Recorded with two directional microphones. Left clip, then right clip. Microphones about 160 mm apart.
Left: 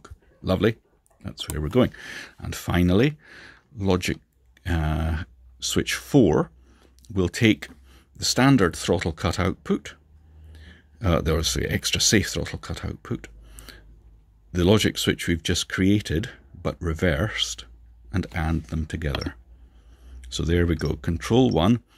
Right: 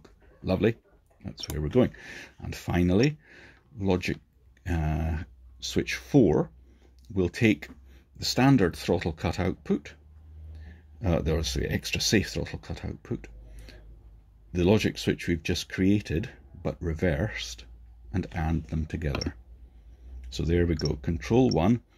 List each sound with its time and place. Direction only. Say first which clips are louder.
0.0 s a sound: left 4 dB; 35° left (ahead or behind)
1.2 s speech: left 3 dB; 35° left (ahead or behind)
20.2 s speech: left 3 dB; 35° left (ahead or behind)